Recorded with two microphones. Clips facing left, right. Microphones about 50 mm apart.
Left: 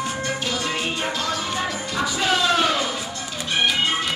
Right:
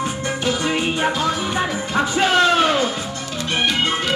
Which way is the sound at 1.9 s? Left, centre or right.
Right.